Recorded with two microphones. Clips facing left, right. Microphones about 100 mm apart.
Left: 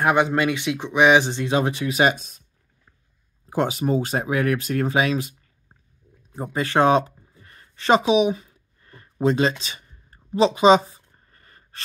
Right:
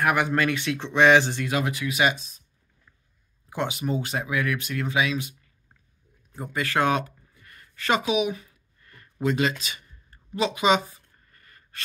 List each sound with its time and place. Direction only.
0.0 s speech: 25° left (ahead or behind)
2.1 s speech: 55° left (ahead or behind)
3.4 s speech: 40° left (ahead or behind)
6.3 s a sound: 30° left (ahead or behind)